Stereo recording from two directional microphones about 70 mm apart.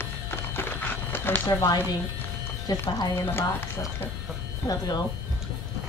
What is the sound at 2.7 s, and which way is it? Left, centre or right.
Speech, left.